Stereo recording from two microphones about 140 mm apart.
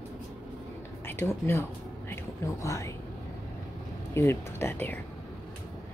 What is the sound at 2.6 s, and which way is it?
Speech, 20° left (ahead or behind).